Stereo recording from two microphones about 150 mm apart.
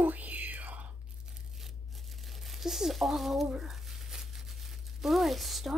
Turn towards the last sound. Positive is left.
turn(degrees=0)  # may be behind; listen again after turning